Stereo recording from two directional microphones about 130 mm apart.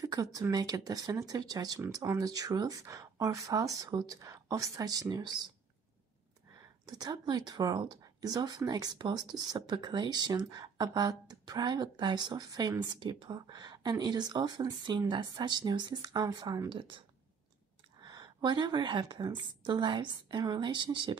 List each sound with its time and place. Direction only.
0.0 s speech: 30° right (ahead or behind)
6.9 s speech: 30° right (ahead or behind)
18.0 s speech: 35° right (ahead or behind)